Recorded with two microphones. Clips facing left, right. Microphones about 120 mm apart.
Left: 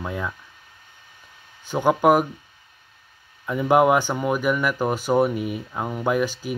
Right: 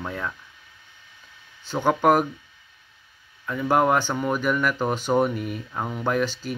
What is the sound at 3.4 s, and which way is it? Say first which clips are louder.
Speech: left 3 dB; 15° left (ahead or behind).